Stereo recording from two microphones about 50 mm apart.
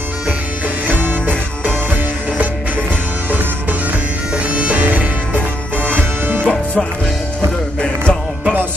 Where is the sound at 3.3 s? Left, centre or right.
Right.